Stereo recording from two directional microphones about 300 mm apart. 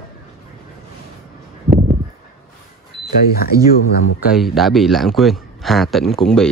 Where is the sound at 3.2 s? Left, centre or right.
Left.